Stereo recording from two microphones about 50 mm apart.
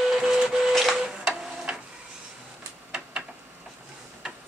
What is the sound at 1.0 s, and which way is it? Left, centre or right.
Printer, centre.